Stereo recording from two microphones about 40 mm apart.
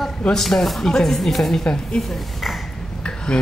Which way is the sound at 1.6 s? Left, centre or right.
Centre.